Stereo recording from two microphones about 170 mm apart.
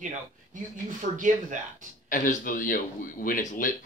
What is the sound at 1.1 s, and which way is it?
Speech, 50° right (ahead or behind).